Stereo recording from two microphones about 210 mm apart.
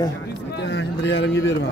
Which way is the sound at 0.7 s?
55° left (ahead or behind).